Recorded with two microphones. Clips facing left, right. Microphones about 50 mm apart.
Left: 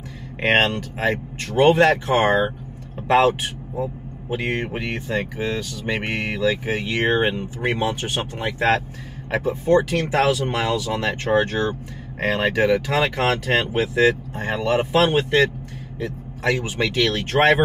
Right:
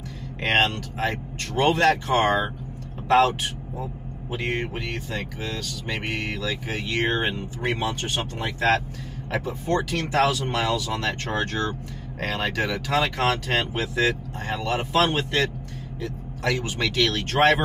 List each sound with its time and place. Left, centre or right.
0.4 s speech: left
4.3 s speech: centre
4.6 s speech: left
8.5 s speech: left